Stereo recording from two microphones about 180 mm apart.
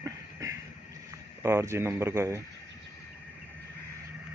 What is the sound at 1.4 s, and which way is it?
Speech, 15° right (ahead or behind).